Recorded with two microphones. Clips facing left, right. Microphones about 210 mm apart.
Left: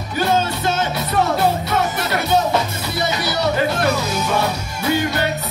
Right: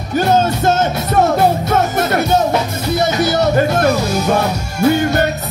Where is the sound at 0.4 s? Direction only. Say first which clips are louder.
Right 6 dB; 45° right (ahead or behind).